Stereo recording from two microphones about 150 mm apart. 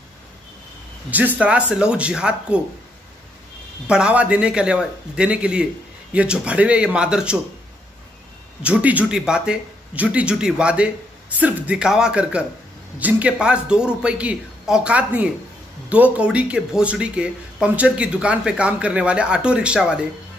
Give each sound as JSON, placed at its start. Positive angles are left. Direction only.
{"t": 1.1, "sound": "speech", "side_deg": -10}
{"t": 3.8, "sound": "speech", "side_deg": -5}
{"t": 8.6, "sound": "speech", "side_deg": -10}